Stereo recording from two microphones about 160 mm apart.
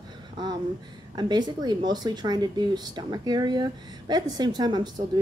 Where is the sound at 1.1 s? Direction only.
25° right (ahead or behind).